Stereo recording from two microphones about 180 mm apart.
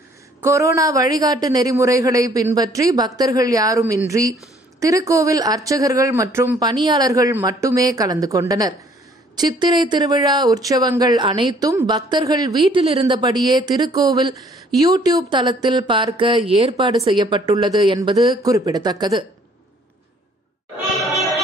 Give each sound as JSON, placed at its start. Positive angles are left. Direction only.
{"t": 0.4, "sound": "speech", "side_deg": -15}